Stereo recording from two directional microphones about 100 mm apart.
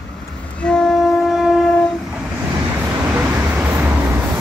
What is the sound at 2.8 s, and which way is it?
Vehicle, 20° right (ahead or behind).